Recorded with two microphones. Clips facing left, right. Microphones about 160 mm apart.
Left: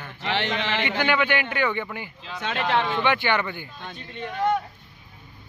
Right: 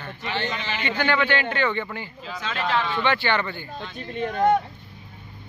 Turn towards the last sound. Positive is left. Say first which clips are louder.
# right 4 dB
turn(degrees=-45)  # may be behind; listen again after turning